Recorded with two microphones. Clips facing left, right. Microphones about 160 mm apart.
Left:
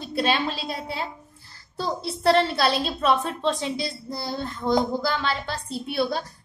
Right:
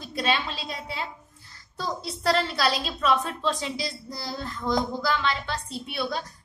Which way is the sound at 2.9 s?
30° left (ahead or behind).